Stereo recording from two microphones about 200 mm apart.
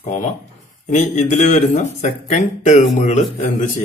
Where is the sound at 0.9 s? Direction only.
35° left (ahead or behind).